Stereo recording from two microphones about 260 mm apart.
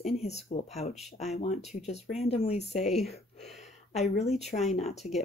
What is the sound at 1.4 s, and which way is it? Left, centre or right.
Speech, left.